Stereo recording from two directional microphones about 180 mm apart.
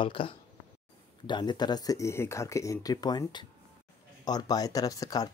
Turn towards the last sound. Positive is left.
turn(degrees=20)  # may be behind; listen again after turning